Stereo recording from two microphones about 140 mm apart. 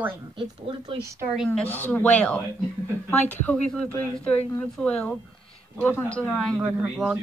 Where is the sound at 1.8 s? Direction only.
10° left (ahead or behind).